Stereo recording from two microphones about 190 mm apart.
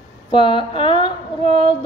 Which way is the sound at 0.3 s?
25° left (ahead or behind).